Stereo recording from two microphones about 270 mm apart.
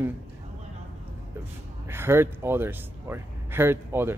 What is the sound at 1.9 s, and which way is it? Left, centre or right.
Speech, centre.